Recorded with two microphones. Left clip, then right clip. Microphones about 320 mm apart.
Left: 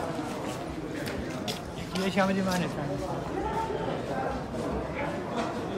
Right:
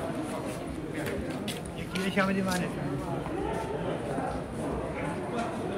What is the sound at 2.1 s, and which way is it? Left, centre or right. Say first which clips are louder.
Speech: left 1 dB; left.